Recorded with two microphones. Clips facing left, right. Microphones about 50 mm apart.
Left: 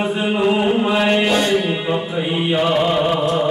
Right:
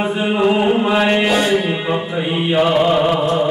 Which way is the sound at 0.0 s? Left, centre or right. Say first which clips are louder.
Right 2 dB; centre.